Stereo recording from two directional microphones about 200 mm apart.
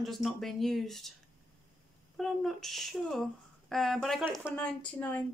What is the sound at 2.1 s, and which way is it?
A woman's voice, centre (ahead or behind).